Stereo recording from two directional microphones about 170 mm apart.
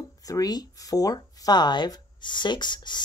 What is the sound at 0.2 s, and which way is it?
A woman's voice, 20° left (ahead or behind).